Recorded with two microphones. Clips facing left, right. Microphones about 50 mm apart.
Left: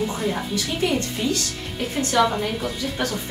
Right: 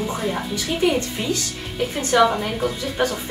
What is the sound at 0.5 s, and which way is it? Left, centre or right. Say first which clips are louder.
A woman's voice: right 6 dB; right.